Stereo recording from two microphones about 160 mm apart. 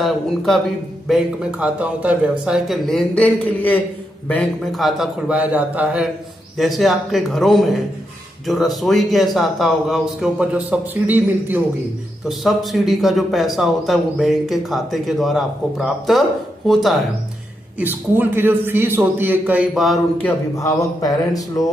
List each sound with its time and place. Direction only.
0.0 s a man's voice: centre (ahead or behind)
12.3 s a man's voice: centre (ahead or behind)
17.7 s a man's voice: 10° right (ahead or behind)
20.5 s speech: 20° left (ahead or behind)